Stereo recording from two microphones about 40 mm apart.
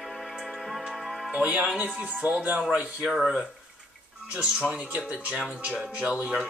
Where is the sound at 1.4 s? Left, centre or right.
Right.